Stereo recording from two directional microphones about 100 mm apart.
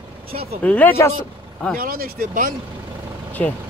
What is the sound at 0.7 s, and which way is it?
Speech, 15° left (ahead or behind).